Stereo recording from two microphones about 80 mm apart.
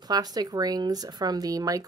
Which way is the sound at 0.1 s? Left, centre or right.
Right.